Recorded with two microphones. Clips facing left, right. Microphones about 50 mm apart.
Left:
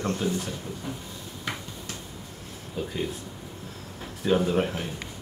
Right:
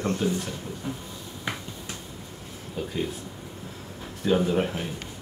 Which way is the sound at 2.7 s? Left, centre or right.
Centre.